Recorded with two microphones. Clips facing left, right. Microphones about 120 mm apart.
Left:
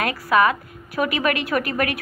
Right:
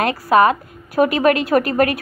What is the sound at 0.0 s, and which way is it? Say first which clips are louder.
A woman's voice: right 5 dB; 30° right (ahead or behind).